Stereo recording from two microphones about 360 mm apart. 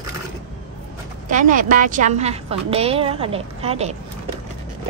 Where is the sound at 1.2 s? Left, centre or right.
Right.